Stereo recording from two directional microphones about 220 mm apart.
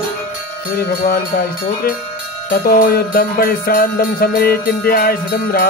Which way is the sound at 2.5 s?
40° left (ahead or behind).